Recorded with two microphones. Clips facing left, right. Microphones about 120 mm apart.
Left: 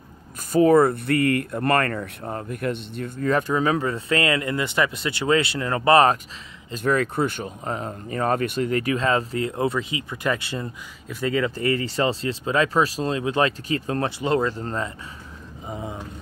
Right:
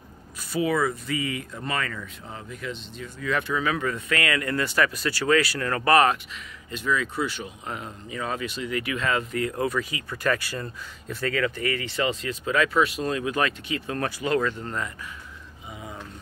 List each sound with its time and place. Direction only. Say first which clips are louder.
0.5 s speech: left 8 dB; 45° left (ahead or behind); by 6.1 s 30° left (ahead or behind)
6.7 s speech: left 5 dB; 50° left (ahead or behind); by 11.3 s 15° left (ahead or behind)
11.3 s speech: left 5 dB; 30° left (ahead or behind)